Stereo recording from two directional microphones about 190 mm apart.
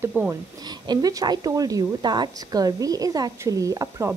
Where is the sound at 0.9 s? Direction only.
20° right (ahead or behind).